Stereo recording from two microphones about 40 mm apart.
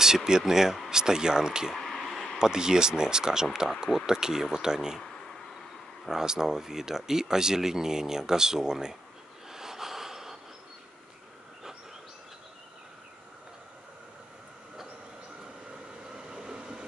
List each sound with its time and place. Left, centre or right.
0.0 s speech: centre
1.8 s a sound: centre
2.3 s speech: centre
6.0 s speech: centre
9.5 s gasp: centre
16.3 s train: centre